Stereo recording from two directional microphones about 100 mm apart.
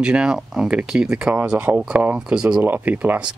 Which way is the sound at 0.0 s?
10° right (ahead or behind).